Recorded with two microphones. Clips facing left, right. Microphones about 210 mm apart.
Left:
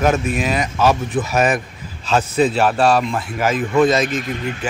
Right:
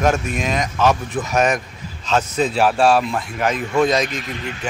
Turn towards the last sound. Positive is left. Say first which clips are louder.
# left 4 dB
turn(degrees=5)  # may be behind; listen again after turning